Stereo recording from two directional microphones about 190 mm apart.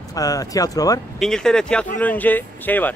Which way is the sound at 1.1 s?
5° left (ahead or behind).